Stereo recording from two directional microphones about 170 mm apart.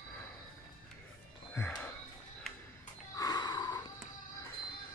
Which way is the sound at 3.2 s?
25° left (ahead or behind).